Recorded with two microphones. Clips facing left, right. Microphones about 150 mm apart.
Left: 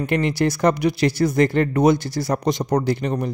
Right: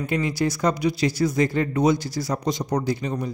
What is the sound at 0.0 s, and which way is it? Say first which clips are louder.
Speech: left 4 dB; 70° left (ahead or behind).